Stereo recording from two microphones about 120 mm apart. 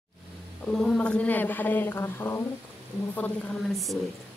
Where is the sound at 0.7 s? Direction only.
10° left (ahead or behind).